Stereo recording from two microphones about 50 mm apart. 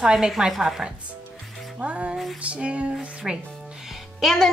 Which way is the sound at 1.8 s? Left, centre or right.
Right.